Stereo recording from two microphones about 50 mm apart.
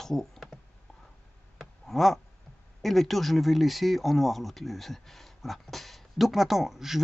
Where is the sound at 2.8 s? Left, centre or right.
Centre.